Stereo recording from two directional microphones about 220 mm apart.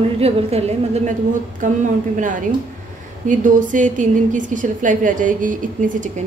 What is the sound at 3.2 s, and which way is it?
A woman's voice, 35° right (ahead or behind).